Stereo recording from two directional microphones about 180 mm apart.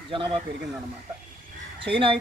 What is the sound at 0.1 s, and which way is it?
Speech, 30° right (ahead or behind).